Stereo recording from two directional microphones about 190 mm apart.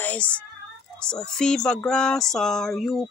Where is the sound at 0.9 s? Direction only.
5° left (ahead or behind).